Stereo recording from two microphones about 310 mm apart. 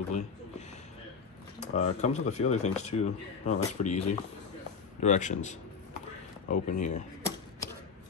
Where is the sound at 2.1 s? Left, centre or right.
Left.